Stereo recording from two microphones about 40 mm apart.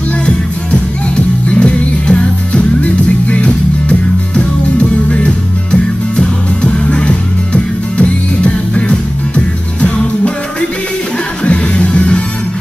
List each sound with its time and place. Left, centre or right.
1.5 s music: left
11.4 s music: left